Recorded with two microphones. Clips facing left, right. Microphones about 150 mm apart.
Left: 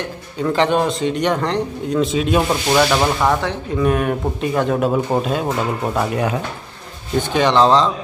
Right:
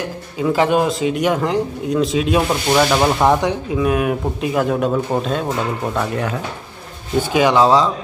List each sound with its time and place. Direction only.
0.4 s speech: 5° right (ahead or behind)
3.2 s speech: 15° right (ahead or behind)
3.7 s speech: 5° right (ahead or behind); by 6.3 s 10° left (ahead or behind)
7.2 s speech: 10° right (ahead or behind)